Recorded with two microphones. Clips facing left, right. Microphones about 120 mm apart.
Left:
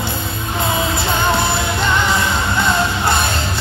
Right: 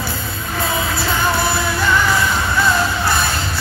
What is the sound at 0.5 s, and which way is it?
Music, 20° left (ahead or behind).